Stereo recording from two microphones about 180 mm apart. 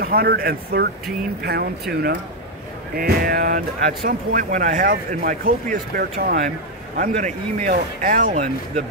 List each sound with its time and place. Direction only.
0.0 s speech: 60° right (ahead or behind)